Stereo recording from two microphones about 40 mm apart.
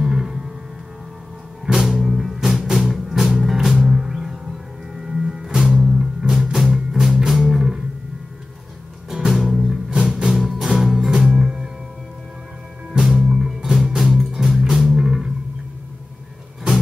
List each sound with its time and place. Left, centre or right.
0.0 s music: centre
1.7 s music: centre
9.1 s music: centre
9.9 s music: right
10.3 s music: centre
12.9 s music: centre